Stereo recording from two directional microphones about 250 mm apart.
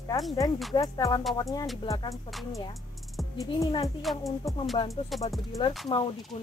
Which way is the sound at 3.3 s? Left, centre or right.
Centre.